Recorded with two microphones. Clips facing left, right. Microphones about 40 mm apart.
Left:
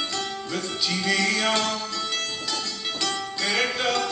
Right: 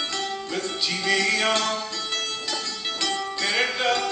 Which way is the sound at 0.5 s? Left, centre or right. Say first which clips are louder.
Left 1 dB; centre.